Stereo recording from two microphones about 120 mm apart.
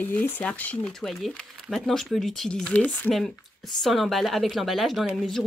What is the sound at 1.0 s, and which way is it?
Speech, centre (ahead or behind).